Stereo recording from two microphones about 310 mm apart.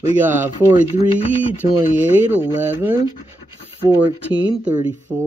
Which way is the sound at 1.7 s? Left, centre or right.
Centre.